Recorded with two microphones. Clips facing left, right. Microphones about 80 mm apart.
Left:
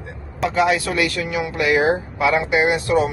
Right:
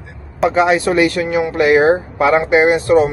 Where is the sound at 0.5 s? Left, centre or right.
Right.